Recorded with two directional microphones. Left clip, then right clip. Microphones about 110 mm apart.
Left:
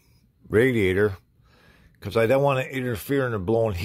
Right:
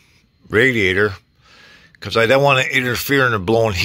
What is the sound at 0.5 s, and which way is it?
Speech, 25° left (ahead or behind).